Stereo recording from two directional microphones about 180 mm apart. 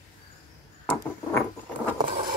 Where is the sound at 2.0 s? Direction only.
25° right (ahead or behind).